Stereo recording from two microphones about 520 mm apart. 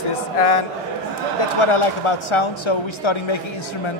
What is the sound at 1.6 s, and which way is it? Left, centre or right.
Speech, left.